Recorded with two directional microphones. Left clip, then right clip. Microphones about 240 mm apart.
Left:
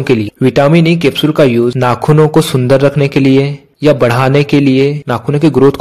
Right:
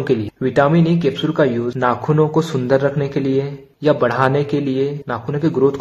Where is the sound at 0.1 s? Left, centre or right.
Left.